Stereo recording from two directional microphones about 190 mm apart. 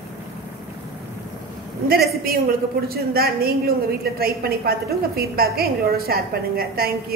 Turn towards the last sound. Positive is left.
turn(degrees=-55)  # may be behind; listen again after turning